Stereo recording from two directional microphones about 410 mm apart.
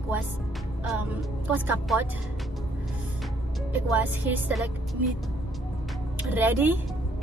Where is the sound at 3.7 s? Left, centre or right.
Centre.